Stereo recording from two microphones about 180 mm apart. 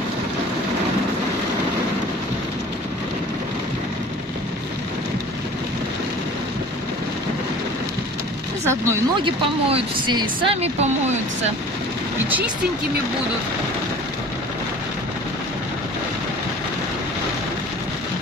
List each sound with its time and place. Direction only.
8.6 s speech: 15° right (ahead or behind)
9.2 s speech: 30° right (ahead or behind)